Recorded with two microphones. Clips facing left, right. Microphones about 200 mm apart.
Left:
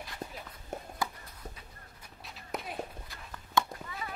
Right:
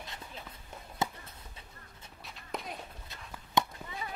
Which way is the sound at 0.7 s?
45° left (ahead or behind).